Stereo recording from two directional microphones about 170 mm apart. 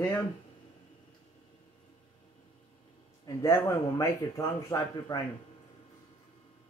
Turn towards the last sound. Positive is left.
turn(degrees=15)  # may be behind; listen again after turning